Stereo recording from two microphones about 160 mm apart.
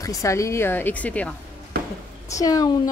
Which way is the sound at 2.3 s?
20° left (ahead or behind).